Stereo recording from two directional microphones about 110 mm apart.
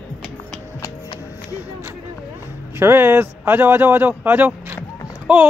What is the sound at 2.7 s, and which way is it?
Speech, 20° right (ahead or behind).